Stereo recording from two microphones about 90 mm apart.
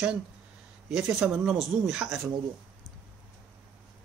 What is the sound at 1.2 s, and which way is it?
Speech, 15° right (ahead or behind).